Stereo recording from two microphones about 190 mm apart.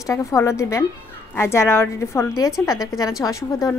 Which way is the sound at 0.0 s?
15° left (ahead or behind).